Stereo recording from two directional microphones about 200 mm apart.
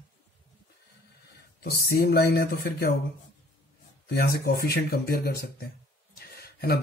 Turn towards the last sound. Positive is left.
turn(degrees=50)  # may be behind; listen again after turning